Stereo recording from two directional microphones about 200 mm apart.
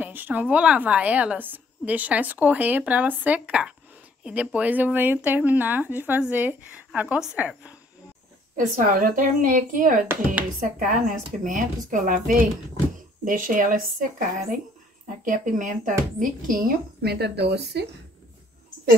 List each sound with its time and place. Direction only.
0.0 s a woman's voice: 10° right (ahead or behind)
8.5 s a woman's voice: 40° right (ahead or behind)